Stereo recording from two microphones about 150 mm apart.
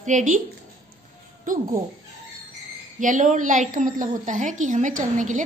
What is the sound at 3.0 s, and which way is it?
A woman's voice, 60° right (ahead or behind).